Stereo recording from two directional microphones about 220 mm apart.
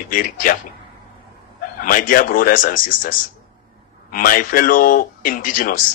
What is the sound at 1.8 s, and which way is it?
A man's voice, 40° left (ahead or behind).